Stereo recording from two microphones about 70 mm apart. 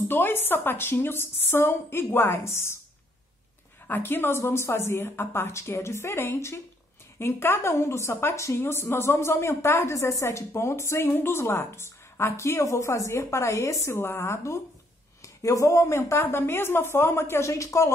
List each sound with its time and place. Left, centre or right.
0.1 s a woman's voice: left
3.8 s a woman's voice: left
7.7 s a woman's voice: left